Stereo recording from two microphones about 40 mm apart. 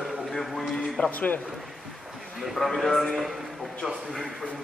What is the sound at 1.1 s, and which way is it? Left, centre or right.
Speech, left.